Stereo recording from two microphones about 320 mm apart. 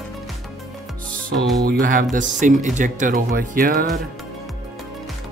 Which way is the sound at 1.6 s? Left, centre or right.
Right.